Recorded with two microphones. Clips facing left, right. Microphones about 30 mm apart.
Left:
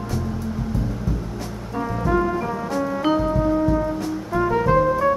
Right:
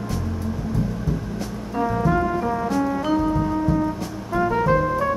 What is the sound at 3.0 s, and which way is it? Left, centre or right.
Music, centre.